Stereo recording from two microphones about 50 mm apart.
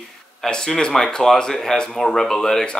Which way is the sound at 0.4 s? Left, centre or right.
Centre.